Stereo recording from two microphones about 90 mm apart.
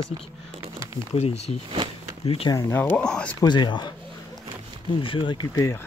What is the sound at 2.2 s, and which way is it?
Speech, 90° left.